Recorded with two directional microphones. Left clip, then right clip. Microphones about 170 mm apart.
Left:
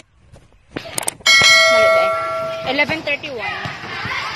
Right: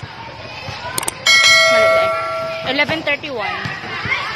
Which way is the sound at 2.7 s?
Centre (ahead or behind).